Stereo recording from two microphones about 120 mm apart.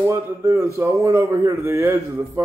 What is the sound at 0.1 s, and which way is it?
A man's voice, 25° right (ahead or behind).